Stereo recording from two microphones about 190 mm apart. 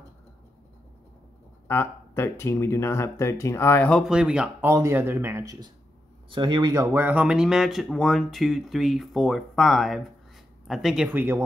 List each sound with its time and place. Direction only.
1.7 s speech: 10° left (ahead or behind); by 11.4 s 10° right (ahead or behind)